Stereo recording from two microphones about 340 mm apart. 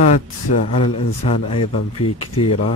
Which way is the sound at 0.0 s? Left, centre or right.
Centre.